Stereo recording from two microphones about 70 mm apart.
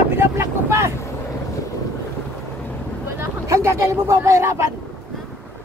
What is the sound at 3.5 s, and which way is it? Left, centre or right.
Speech, right.